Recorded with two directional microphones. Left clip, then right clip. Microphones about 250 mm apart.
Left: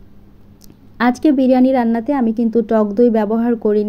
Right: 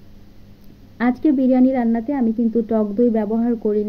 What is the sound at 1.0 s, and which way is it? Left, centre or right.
A woman's voice, left.